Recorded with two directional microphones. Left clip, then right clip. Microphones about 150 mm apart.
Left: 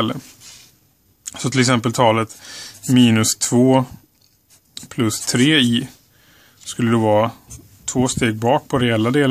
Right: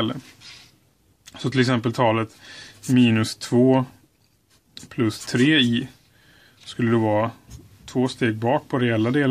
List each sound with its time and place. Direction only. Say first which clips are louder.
1.2 s speech: left 4 dB; 35° left (ahead or behind)